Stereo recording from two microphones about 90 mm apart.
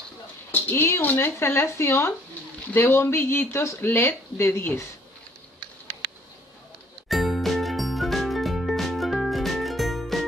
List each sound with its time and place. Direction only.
0.5 s speech: 25° left (ahead or behind)
7.1 s jingle: centre (ahead or behind)